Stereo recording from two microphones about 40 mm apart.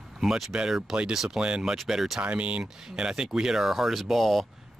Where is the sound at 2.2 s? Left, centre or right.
Right.